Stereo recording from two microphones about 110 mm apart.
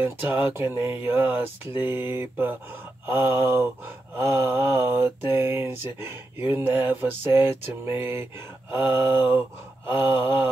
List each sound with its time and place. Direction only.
0.0 s speech: 20° right (ahead or behind)